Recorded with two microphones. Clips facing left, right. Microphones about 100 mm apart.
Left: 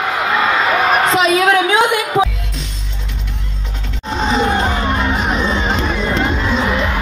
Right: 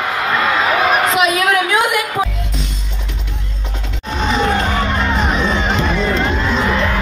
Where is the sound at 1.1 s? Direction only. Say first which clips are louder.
Left 2 dB; 30° left (ahead or behind).